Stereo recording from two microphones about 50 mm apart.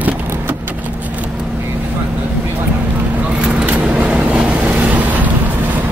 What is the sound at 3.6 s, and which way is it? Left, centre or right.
Vehicle, right.